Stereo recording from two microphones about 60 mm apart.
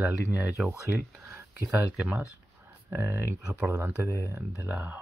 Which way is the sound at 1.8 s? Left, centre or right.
Right.